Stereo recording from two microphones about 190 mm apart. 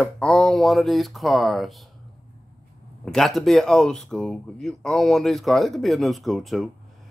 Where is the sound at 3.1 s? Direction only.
Centre (ahead or behind).